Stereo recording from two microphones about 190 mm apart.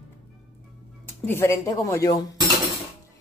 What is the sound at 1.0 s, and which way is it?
Speech, 15° left (ahead or behind).